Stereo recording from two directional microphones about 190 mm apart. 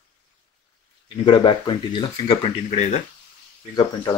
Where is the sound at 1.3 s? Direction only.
25° left (ahead or behind).